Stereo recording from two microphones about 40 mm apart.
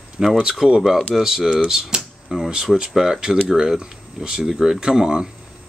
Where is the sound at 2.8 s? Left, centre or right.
Centre.